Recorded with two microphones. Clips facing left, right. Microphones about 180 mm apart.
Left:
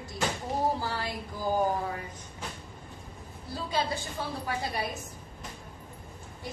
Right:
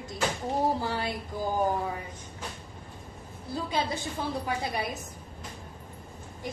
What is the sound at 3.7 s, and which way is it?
Speech, 20° right (ahead or behind).